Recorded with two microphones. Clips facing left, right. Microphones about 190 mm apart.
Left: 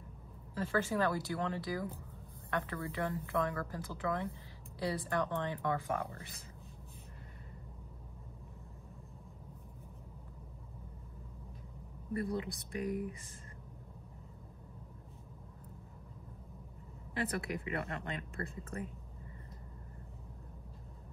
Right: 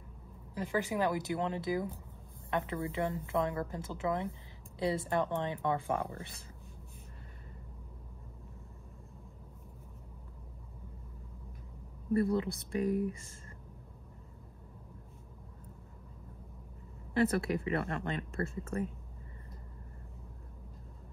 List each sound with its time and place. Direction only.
0.6 s a woman's voice: 15° right (ahead or behind)
12.4 s speech: 30° right (ahead or behind)
17.1 s speech: 30° right (ahead or behind)